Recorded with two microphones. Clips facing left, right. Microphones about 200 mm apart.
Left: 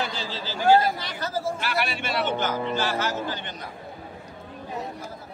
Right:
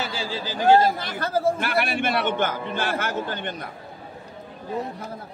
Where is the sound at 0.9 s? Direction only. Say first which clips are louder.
Right 4 dB; 55° right (ahead or behind).